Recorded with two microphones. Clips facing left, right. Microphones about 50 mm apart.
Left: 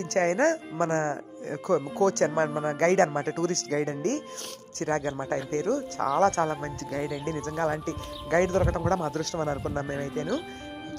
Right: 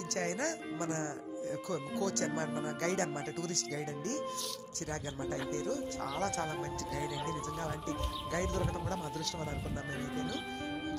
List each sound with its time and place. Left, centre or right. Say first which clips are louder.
0.0 s speech: left 12 dB; left